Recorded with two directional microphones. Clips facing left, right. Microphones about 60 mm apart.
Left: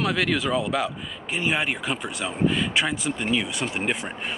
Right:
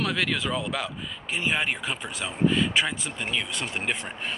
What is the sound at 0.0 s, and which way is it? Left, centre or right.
Speech, centre.